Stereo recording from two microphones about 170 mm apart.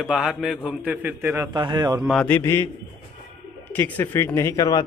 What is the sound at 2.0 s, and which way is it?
Speech, 5° left (ahead or behind).